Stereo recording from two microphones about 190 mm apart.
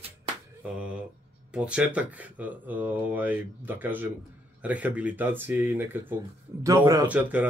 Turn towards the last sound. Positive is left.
turn(degrees=-10)  # may be behind; listen again after turning